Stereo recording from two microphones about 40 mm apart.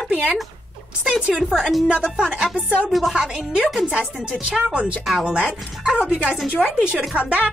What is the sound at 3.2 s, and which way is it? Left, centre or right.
A woman's voice, right.